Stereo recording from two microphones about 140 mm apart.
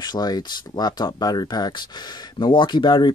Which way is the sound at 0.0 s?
30° left (ahead or behind).